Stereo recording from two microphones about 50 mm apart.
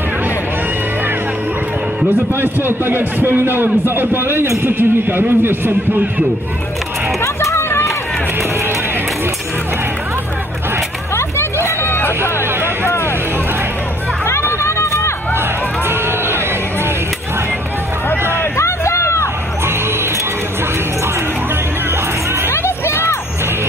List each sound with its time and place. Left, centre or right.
2.4 s a man's voice: right
7.5 s run: left
11.6 s hubbub: left
14.6 s run: left
18.6 s hubbub: left
22.5 s music: left